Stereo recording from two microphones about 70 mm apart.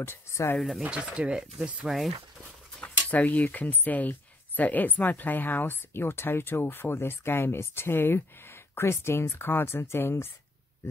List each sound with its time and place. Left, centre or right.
0.0 s speech: left
0.6 s speech: centre
0.8 s speech: centre
2.8 s speech: left